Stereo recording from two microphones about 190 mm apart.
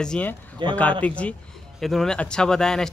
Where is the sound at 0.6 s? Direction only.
25° right (ahead or behind).